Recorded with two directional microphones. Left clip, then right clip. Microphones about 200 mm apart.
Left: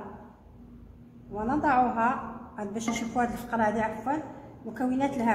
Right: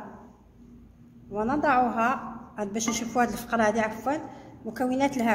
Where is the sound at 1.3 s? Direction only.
45° right (ahead or behind).